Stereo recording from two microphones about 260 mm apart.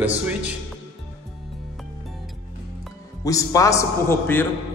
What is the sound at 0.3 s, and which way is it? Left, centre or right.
Speech, centre.